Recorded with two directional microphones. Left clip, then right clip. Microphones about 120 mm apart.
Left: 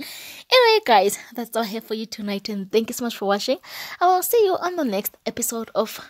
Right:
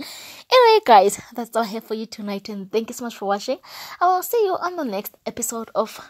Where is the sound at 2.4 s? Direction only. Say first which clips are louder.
Left 3 dB; 45° left (ahead or behind).